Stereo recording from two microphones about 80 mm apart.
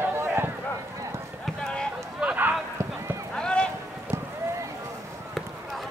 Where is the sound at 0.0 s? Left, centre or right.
Right.